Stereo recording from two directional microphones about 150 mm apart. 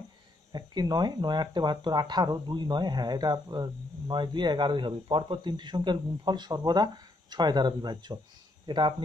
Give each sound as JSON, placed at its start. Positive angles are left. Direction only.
{"t": 0.5, "sound": "speech", "side_deg": -25}